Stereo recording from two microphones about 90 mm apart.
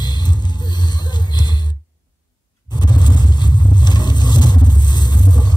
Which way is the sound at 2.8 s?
55° left (ahead or behind).